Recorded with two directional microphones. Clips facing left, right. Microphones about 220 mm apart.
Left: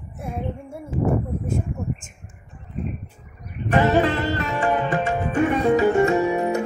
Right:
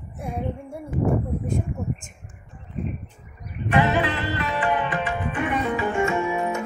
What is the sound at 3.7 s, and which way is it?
Music, 40° left (ahead or behind).